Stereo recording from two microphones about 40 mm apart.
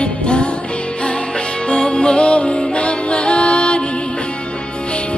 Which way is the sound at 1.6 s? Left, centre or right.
Left.